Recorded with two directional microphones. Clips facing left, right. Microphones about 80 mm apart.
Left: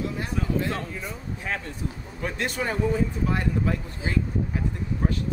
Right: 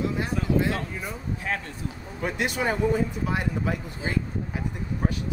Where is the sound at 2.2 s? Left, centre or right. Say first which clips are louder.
Right 2 dB; centre.